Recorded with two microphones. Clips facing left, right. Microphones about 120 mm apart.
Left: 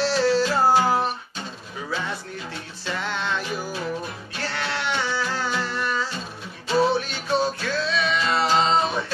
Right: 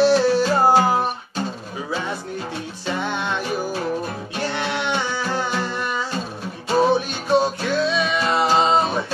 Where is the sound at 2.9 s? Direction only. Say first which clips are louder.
Right 3 dB; 15° right (ahead or behind).